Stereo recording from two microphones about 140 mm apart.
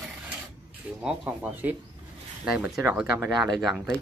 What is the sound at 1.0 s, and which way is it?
Speech, 10° right (ahead or behind).